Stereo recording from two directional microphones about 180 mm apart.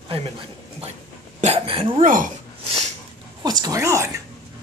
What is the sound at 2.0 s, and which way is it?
Speech, 50° right (ahead or behind).